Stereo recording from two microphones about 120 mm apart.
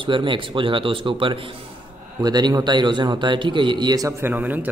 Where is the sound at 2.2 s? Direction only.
35° right (ahead or behind).